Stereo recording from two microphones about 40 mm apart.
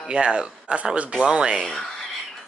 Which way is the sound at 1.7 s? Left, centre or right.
Centre.